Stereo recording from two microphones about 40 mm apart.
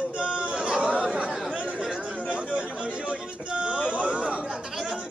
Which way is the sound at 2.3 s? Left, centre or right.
Right.